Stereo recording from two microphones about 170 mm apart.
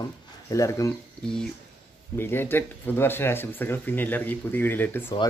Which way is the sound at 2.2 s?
15° left (ahead or behind).